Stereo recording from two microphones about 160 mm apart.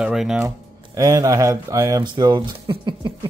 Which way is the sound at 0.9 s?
20° right (ahead or behind).